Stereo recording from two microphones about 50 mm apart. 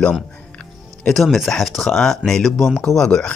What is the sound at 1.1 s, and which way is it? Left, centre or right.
Speech, centre.